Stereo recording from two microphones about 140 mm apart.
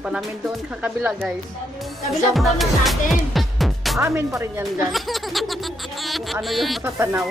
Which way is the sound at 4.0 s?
20° right (ahead or behind).